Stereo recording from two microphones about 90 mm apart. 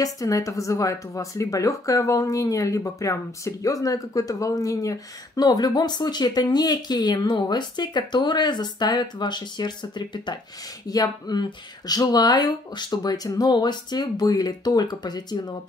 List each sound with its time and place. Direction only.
0.0 s speech: 40° left (ahead or behind)